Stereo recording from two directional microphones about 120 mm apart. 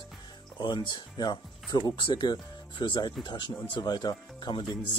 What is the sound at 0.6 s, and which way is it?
Speech, 40° left (ahead or behind).